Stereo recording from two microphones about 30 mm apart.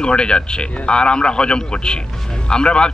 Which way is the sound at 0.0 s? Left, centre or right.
Left.